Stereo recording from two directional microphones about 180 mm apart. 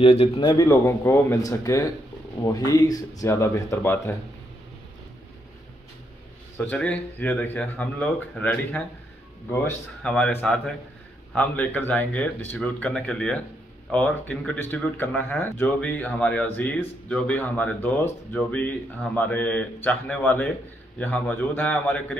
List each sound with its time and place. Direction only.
0.0 s speech: 30° left (ahead or behind); by 4.1 s 15° left (ahead or behind)
6.6 s speech: 10° left (ahead or behind)
10.0 s speech: 5° left (ahead or behind)